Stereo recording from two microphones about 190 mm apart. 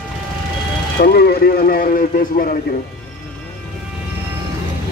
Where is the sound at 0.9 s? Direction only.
55° left (ahead or behind).